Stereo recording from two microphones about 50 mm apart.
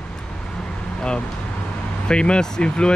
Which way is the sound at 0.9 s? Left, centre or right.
Centre.